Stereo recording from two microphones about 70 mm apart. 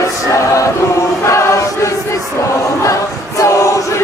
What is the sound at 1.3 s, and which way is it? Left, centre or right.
Choir, left.